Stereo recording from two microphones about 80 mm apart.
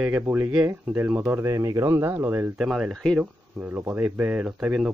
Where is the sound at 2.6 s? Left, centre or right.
Centre.